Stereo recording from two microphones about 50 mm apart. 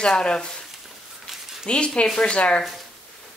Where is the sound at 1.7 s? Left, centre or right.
Left.